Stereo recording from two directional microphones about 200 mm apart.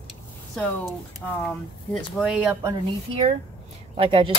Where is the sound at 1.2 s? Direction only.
10° left (ahead or behind).